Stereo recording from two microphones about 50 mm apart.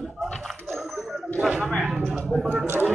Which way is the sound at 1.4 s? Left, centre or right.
Centre.